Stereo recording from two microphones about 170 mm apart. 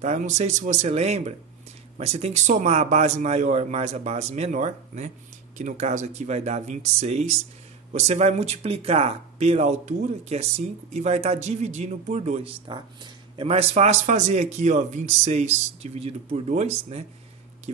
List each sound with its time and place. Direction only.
0.0 s speech: 45° right (ahead or behind)